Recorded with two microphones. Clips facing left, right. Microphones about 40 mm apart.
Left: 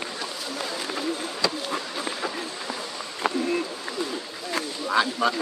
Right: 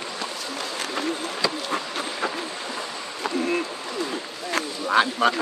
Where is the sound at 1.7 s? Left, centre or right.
Right.